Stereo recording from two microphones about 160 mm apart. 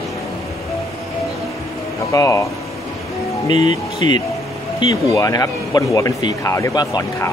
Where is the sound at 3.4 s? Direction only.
30° left (ahead or behind).